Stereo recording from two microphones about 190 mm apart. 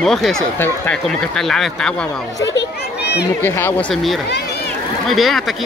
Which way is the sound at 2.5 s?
65° left (ahead or behind).